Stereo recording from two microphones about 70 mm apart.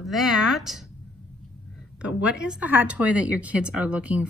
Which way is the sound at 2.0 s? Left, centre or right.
Centre.